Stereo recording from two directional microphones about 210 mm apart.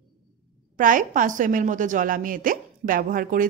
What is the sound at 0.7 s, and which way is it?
A woman's voice, 40° right (ahead or behind).